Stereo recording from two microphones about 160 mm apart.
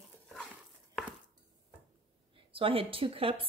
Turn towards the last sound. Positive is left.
turn(degrees=-35)  # may be behind; listen again after turning